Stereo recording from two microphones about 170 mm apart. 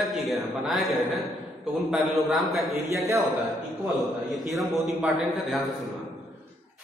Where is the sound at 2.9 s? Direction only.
15° right (ahead or behind).